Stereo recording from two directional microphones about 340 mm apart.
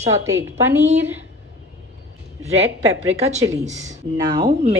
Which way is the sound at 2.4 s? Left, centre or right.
Centre.